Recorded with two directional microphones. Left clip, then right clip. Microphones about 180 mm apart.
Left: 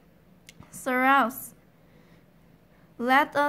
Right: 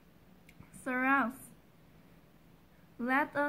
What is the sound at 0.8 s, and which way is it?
Speech, 30° left (ahead or behind).